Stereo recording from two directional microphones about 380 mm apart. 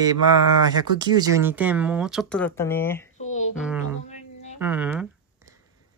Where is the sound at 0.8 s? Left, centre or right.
Centre.